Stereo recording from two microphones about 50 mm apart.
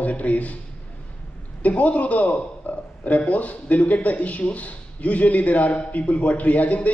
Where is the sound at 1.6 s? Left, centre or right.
Left.